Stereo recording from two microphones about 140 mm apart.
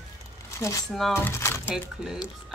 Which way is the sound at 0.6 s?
25° left (ahead or behind).